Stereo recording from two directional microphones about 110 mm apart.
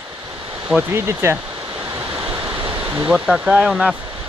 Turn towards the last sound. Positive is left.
turn(degrees=-10)  # may be behind; listen again after turning